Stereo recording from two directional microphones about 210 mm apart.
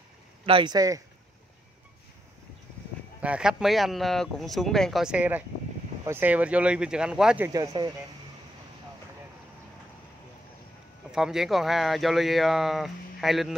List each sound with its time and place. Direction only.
0.5 s speech: 20° right (ahead or behind)
3.2 s speech: 5° right (ahead or behind)
11.1 s speech: centre (ahead or behind)